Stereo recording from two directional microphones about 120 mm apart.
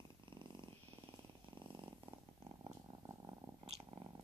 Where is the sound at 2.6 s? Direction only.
30° right (ahead or behind).